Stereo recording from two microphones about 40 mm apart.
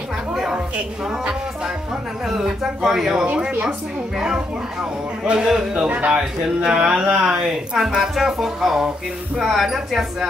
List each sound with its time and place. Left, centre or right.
2.2 s speech: centre
5.2 s speech: right
5.9 s speech: right
6.1 s speech: right
7.7 s speech: centre